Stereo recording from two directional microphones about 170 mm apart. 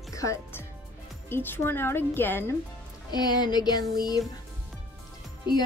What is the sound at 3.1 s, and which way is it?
Speech, 25° left (ahead or behind).